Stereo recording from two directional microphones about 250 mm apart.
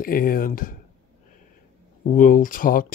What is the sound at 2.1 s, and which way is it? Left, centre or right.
Speech, left.